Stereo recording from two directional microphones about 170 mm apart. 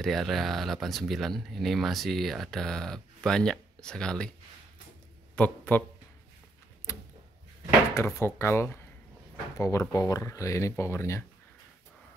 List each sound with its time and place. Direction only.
0.0 s speech: centre (ahead or behind)
5.3 s speech: 10° left (ahead or behind)
6.9 s a sound: 15° left (ahead or behind)
7.9 s speech: 15° left (ahead or behind)